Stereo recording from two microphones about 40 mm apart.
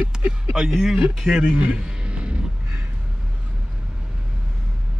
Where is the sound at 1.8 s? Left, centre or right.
Right.